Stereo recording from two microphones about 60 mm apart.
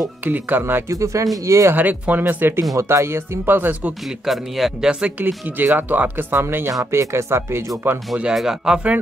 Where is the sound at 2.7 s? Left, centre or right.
Right.